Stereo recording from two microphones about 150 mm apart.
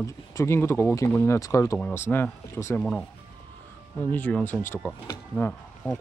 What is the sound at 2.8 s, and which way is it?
Speech, 5° left (ahead or behind).